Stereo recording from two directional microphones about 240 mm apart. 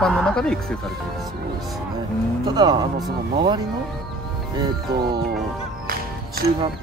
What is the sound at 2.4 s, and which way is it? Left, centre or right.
Speech, centre.